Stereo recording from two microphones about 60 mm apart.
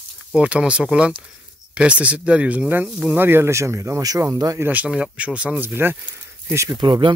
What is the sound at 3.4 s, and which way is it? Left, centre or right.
Speech, right.